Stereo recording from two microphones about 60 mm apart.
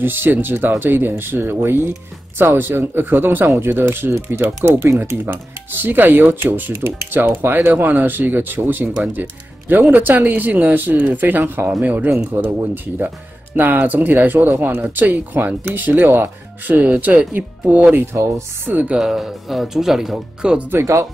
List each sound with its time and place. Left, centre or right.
0.0 s speech: right
17.7 s speech: right
18.9 s speech: centre
20.8 s speech: right